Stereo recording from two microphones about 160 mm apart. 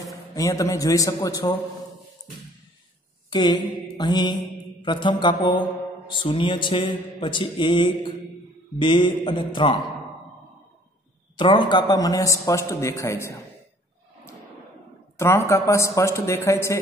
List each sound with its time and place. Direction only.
0.3 s a man's voice: 20° left (ahead or behind)
3.3 s a sound: 30° left (ahead or behind)
3.9 s mantra: 25° left (ahead or behind)
6.0 s a man's voice: 30° left (ahead or behind)
11.3 s a man's voice: 30° left (ahead or behind)
15.1 s a man's voice: 15° left (ahead or behind)